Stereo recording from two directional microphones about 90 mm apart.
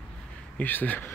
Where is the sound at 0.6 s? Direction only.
20° left (ahead or behind).